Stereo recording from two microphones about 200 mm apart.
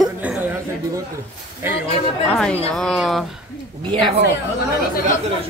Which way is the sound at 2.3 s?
5° left (ahead or behind).